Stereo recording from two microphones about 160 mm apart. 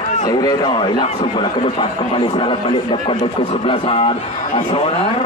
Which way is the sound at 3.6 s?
35° left (ahead or behind).